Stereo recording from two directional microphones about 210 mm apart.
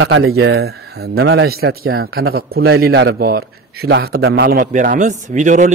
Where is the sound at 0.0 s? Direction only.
75° right (ahead or behind).